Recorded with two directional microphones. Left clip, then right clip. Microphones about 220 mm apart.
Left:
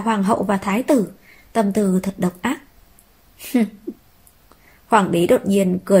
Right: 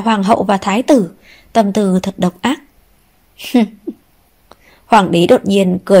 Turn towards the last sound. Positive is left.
turn(degrees=-35)  # may be behind; listen again after turning